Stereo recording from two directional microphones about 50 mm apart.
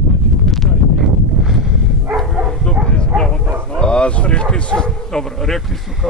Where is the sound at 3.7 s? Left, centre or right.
Left.